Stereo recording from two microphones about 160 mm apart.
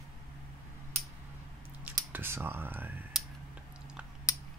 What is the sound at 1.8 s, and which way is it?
Speech, 15° right (ahead or behind).